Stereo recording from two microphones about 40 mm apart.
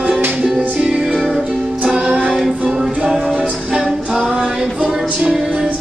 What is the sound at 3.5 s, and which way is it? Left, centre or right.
Music, centre.